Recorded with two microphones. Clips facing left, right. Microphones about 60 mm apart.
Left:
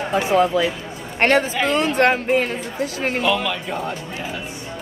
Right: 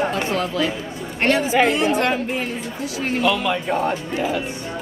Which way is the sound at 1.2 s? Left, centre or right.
Left.